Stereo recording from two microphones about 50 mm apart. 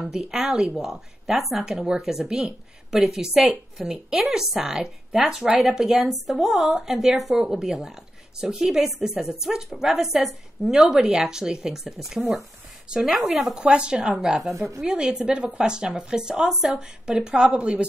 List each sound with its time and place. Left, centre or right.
0.0 s a woman's voice: centre
1.7 s a woman's voice: centre
3.8 s speech: centre
4.2 s a woman's voice: centre
13.6 s a woman's voice: right